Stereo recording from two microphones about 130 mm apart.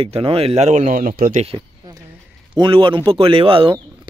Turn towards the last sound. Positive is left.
turn(degrees=-45)  # may be behind; listen again after turning